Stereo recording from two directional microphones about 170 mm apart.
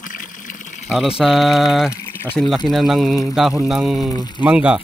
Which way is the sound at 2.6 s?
Centre (ahead or behind).